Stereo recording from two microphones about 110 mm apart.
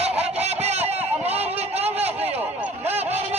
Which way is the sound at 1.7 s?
70° right (ahead or behind).